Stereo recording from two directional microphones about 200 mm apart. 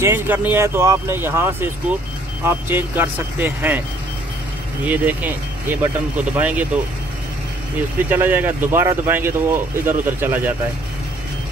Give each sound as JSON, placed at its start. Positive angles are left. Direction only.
{"t": 0.0, "sound": "speech", "side_deg": -10}
{"t": 4.8, "sound": "speech", "side_deg": -10}
{"t": 8.1, "sound": "speech", "side_deg": -10}